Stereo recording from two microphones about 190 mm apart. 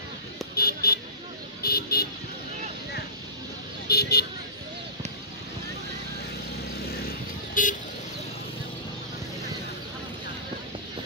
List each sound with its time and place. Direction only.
0.6 s a sound: 55° left (ahead or behind)
1.6 s vehicle: 55° left (ahead or behind)
3.9 s speech: 55° left (ahead or behind)
7.0 s vehicle: 50° left (ahead or behind)